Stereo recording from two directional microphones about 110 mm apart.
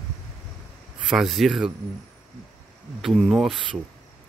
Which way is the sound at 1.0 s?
Centre (ahead or behind).